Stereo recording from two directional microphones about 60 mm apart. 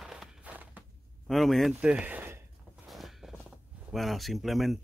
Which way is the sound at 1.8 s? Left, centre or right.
Centre.